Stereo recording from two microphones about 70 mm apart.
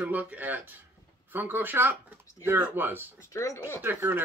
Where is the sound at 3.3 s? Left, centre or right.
Left.